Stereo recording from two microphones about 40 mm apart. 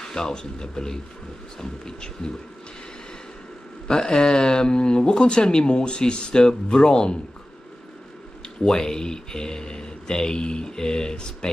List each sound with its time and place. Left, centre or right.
0.0 s speech: centre
3.8 s speech: centre
8.5 s speech: centre